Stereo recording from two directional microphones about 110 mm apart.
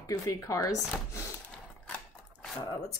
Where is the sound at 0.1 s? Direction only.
30° left (ahead or behind).